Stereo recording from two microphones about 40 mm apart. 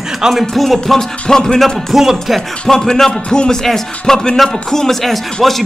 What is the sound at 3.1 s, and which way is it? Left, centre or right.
Speech, left.